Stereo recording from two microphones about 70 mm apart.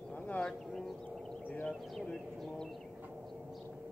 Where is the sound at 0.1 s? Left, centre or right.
Left.